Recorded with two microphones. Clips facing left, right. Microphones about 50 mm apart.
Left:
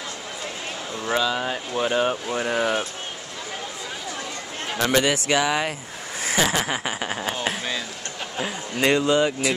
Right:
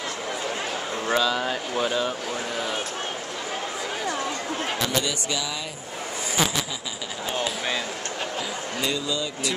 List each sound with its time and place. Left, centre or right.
1.1 s speech: centre
1.9 s speech: left
4.7 s a man's voice: left
6.2 s a sound: left
8.8 s a man's voice: left